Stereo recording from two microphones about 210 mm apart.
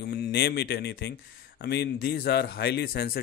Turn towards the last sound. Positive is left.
turn(degrees=50)  # may be behind; listen again after turning